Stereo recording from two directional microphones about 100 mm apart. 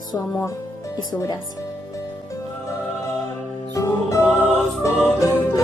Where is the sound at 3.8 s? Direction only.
30° left (ahead or behind).